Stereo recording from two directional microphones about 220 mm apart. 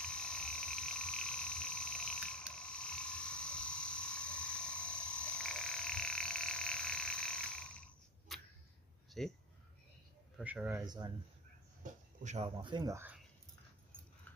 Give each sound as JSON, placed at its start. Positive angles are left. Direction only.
{"t": 0.0, "sound": "frog", "side_deg": 5}
{"t": 9.2, "sound": "a man's voice", "side_deg": 0}
{"t": 10.8, "sound": "speech", "side_deg": -20}
{"t": 11.8, "sound": "speech", "side_deg": -35}